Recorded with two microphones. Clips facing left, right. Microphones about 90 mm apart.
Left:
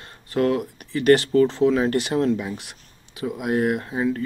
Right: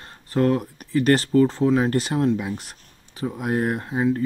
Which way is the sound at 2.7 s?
35° right (ahead or behind).